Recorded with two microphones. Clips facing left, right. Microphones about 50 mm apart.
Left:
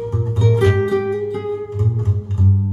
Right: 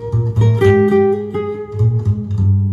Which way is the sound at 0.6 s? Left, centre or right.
Right.